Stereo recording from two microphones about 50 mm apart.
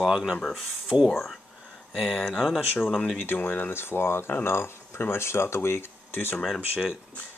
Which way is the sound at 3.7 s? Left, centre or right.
Left.